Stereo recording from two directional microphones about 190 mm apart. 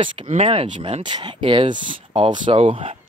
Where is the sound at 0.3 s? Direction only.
30° right (ahead or behind).